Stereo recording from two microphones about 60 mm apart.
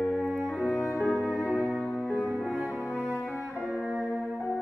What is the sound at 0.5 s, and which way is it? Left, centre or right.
Music, centre.